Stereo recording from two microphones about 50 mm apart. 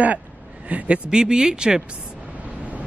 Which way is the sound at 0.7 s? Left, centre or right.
Right.